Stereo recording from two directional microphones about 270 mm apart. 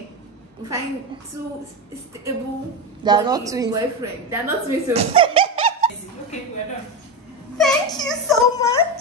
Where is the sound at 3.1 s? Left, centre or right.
Centre.